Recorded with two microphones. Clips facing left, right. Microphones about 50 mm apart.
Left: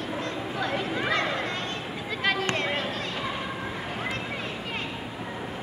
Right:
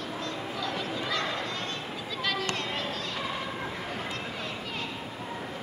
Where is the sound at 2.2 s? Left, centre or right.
Left.